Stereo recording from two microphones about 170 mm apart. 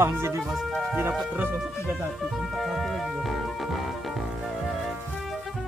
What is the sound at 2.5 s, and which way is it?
Music, centre (ahead or behind).